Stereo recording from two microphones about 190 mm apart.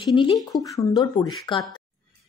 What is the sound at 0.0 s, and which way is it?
Speech, 25° left (ahead or behind).